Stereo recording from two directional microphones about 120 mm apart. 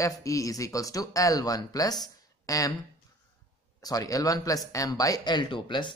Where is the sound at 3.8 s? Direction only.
30° left (ahead or behind).